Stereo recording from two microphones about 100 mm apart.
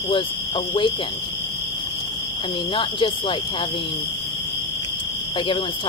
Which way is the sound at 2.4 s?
60° left (ahead or behind).